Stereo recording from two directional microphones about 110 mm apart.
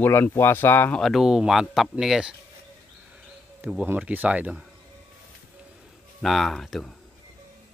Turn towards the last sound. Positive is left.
turn(degrees=5)  # may be behind; listen again after turning